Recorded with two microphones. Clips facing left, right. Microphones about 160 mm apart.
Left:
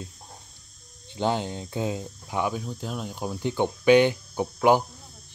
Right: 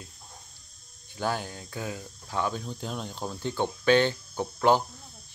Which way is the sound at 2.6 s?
5° left (ahead or behind).